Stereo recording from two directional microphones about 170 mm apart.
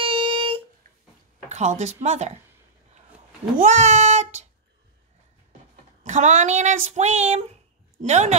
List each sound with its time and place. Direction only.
0.0 s a sound: 30° right (ahead or behind)
1.5 s speech: 45° right (ahead or behind)
3.5 s child singing: 45° right (ahead or behind)
6.0 s speech: 45° right (ahead or behind)